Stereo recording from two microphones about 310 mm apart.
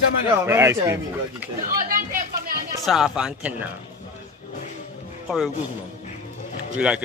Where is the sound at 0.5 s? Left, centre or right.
Centre.